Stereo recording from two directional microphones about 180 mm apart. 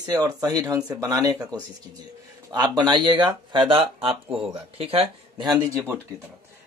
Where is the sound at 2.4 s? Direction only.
25° right (ahead or behind).